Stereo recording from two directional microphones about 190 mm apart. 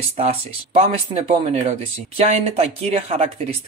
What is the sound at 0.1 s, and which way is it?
Speech, 30° right (ahead or behind).